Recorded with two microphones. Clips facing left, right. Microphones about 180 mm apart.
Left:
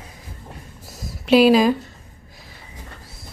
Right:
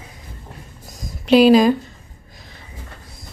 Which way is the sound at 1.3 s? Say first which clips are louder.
Right 2 dB; 5° left (ahead or behind).